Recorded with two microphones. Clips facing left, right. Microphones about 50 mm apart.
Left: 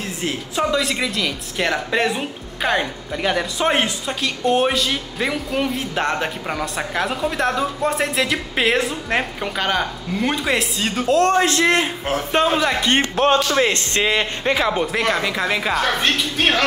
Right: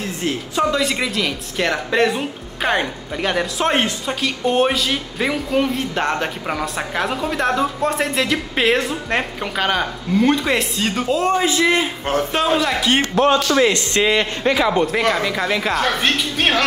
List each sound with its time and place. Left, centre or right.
0.2 s speech: centre
13.2 s speech: left
14.0 s speech: centre